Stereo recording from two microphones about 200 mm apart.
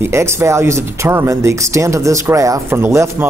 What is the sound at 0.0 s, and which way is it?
Speech, 15° right (ahead or behind).